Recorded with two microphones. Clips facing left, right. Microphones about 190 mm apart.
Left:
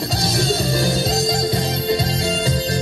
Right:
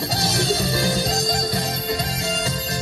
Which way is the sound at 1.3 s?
25° left (ahead or behind).